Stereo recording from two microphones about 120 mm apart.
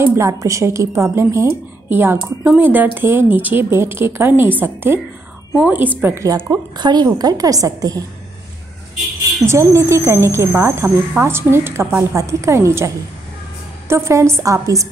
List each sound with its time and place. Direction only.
0.0 s a woman's voice: 20° right (ahead or behind)
6.8 s a woman's voice: 35° right (ahead or behind)
9.5 s a woman's voice: 25° right (ahead or behind)